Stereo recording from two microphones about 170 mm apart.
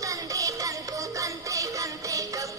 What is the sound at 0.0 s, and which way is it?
Music, 20° right (ahead or behind).